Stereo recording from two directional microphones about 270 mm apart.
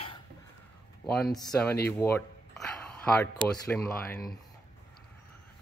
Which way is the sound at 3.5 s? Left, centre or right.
Centre.